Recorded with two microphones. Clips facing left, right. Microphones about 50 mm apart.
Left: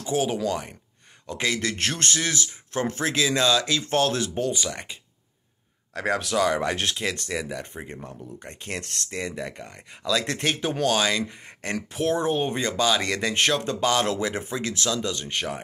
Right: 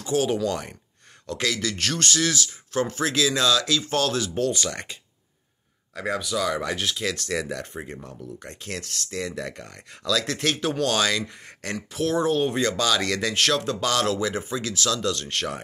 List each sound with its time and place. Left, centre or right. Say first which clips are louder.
0.0 s speech: right 1 dB; centre
1.2 s speech: even; centre
4.4 s speech: right 2 dB; centre
5.9 s speech: left 3 dB; left
7.2 s speech: right 2 dB; centre
8.4 s speech: left 2 dB; left
11.7 s speech: even; left; by 15.6 s centre